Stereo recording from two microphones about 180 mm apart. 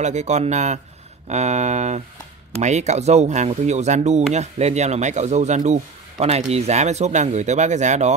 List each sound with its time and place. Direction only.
0.0 s speech: 40° right (ahead or behind)